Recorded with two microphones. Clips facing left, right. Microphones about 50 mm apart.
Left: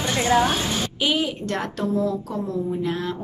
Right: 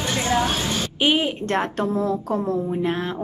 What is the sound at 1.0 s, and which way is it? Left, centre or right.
A woman's voice, right.